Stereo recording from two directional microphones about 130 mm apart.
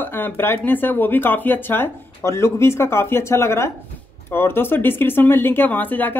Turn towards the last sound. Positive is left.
turn(degrees=15)  # may be behind; listen again after turning